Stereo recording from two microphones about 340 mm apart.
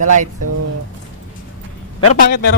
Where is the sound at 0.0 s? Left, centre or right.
Right.